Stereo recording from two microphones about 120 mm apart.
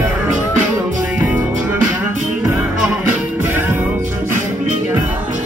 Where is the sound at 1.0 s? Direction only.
10° right (ahead or behind).